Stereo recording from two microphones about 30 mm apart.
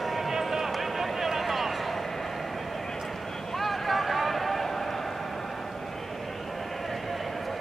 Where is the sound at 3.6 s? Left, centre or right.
Centre.